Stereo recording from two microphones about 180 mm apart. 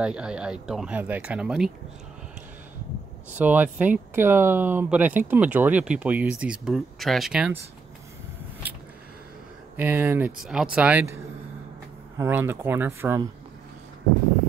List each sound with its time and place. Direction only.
0.0 s speech: 5° right (ahead or behind)
3.3 s speech: 10° right (ahead or behind)
9.8 s speech: 10° right (ahead or behind)
12.2 s speech: 10° right (ahead or behind)